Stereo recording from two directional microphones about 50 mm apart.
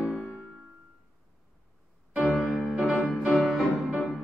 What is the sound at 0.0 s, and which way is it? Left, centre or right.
Music, centre.